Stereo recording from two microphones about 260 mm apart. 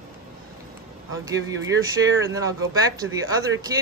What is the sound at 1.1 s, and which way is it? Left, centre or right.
Speech, right.